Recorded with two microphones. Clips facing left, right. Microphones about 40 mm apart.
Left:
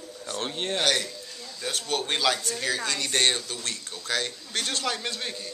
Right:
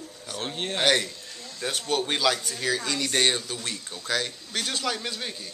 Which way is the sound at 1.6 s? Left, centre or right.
Centre.